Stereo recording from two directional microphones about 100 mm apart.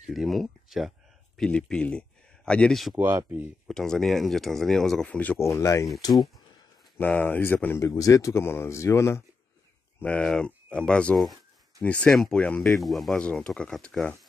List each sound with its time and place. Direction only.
0.0 s speech: centre (ahead or behind)
3.3 s speech: 20° right (ahead or behind)
3.6 s speech: 5° left (ahead or behind)
5.4 s speech: 30° left (ahead or behind)
7.0 s speech: 15° left (ahead or behind)
7.8 s speech: 30° left (ahead or behind)
9.9 s speech: 10° left (ahead or behind)
12.6 s speech: centre (ahead or behind)